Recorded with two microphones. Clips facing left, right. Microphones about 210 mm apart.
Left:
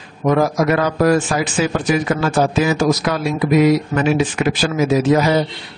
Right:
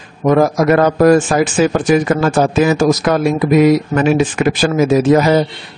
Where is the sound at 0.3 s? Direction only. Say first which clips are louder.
Right 4 dB; 50° right (ahead or behind).